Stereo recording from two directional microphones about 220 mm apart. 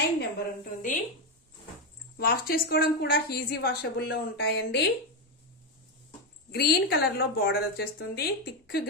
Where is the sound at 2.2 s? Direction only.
45° left (ahead or behind).